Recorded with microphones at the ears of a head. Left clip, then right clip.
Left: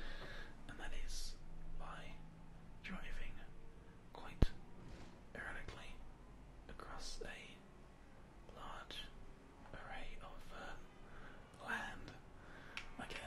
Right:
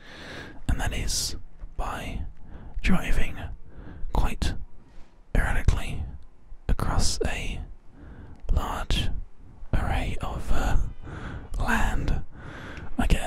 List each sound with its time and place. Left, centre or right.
0.0 s whispering: right